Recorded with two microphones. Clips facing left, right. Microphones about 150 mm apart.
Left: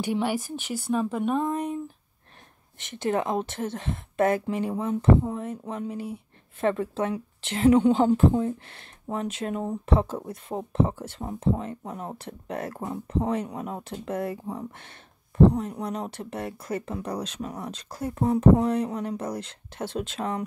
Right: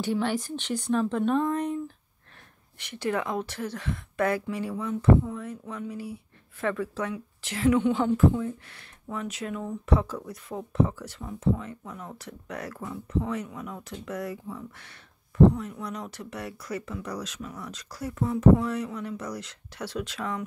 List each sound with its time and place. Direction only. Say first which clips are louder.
0.0 s speech: left 1 dB; 10° left (ahead or behind)
2.8 s speech: left 3 dB; 25° left (ahead or behind)
11.1 s speech: left 1 dB; 40° left (ahead or behind)
14.3 s speech: left 4 dB; 40° left (ahead or behind)